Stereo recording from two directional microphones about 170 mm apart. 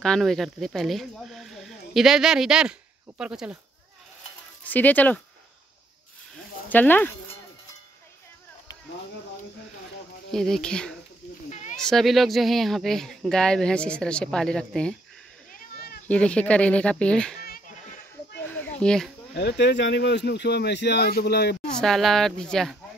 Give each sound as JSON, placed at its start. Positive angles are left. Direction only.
{"t": 0.0, "sound": "speech", "side_deg": 5}
{"t": 4.6, "sound": "speech", "side_deg": 10}
{"t": 6.7, "sound": "speech", "side_deg": 10}
{"t": 10.3, "sound": "speech", "side_deg": 0}
{"t": 15.5, "sound": "a sound", "side_deg": 65}
{"t": 16.1, "sound": "speech", "side_deg": 5}
{"t": 17.4, "sound": "goat", "side_deg": 55}
{"t": 18.8, "sound": "speech", "side_deg": 5}
{"t": 19.3, "sound": "speech", "side_deg": 80}
{"t": 21.7, "sound": "speech", "side_deg": 0}